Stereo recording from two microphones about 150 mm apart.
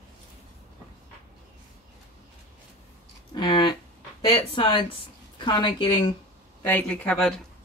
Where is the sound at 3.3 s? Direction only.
30° left (ahead or behind).